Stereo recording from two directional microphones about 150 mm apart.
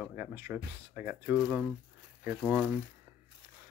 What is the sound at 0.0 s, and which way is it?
Speech, 10° right (ahead or behind).